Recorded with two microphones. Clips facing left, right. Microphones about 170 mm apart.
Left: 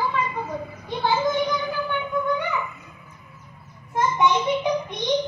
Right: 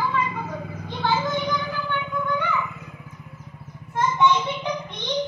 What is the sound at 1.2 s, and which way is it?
Music, 20° left (ahead or behind).